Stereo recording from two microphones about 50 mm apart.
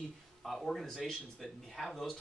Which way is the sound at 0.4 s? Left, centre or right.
Centre.